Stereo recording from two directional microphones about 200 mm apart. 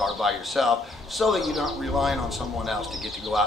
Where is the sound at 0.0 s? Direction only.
Centre (ahead or behind).